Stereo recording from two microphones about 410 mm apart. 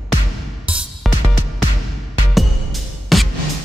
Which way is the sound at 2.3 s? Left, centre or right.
Centre.